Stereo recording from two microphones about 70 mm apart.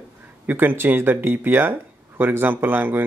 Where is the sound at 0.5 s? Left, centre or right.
Right.